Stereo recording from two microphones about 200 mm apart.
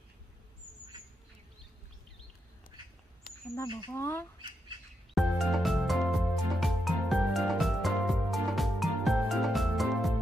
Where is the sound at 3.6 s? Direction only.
25° left (ahead or behind).